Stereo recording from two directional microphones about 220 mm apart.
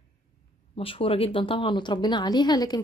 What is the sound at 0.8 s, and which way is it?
A woman's voice, 25° left (ahead or behind).